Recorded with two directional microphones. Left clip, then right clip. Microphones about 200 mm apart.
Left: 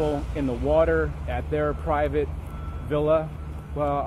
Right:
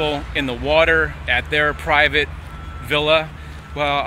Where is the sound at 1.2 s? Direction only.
10° right (ahead or behind).